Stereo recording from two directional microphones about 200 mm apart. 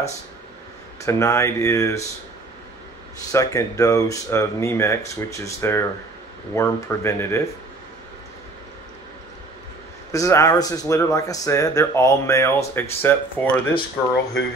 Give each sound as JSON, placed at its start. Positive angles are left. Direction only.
{"t": 1.0, "sound": "speech", "side_deg": 15}
{"t": 3.3, "sound": "speech", "side_deg": 15}
{"t": 10.1, "sound": "speech", "side_deg": 15}